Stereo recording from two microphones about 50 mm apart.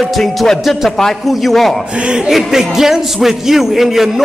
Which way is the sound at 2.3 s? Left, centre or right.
Centre.